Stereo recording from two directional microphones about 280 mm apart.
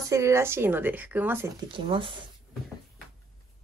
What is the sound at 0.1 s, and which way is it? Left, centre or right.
Speech, centre.